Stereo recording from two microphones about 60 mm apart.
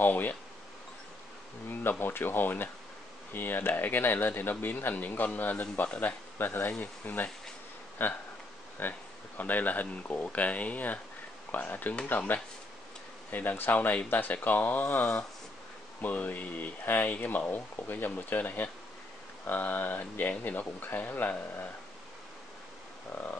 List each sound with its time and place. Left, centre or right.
0.0 s speech: left
1.7 s speech: left